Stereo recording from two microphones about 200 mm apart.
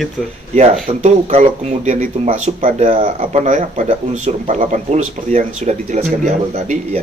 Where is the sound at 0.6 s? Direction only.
35° right (ahead or behind).